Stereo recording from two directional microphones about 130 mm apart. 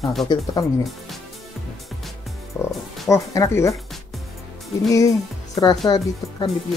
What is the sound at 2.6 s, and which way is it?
Speech, 5° left (ahead or behind).